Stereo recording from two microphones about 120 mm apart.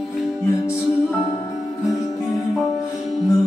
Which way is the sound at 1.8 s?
30° left (ahead or behind).